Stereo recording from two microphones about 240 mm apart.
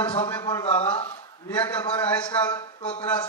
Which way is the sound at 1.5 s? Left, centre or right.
Centre.